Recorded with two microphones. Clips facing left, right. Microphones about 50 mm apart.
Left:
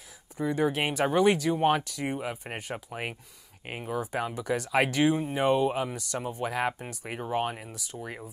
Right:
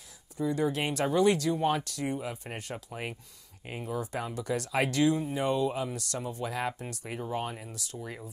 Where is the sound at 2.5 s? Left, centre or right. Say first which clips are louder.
Left 3 dB; left.